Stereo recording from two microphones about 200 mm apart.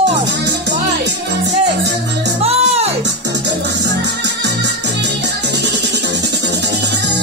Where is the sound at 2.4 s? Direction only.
30° right (ahead or behind).